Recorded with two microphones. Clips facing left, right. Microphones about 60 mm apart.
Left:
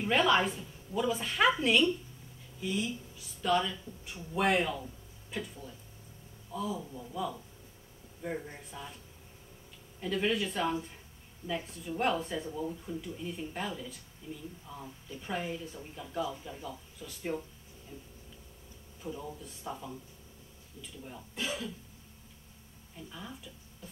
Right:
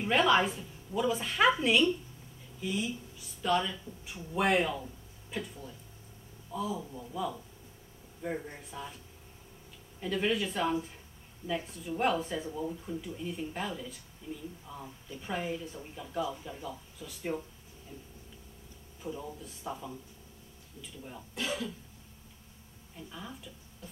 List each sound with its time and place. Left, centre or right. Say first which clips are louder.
0.0 s speech: right 1 dB; centre
21.4 s speech: right 2 dB; centre
22.9 s speech: right 1 dB; centre